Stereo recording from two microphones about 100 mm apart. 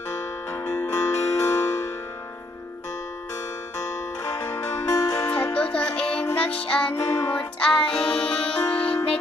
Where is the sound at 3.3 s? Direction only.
30° left (ahead or behind).